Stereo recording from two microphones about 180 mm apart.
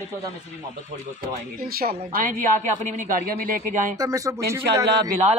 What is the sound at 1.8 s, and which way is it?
Speech, 55° right (ahead or behind).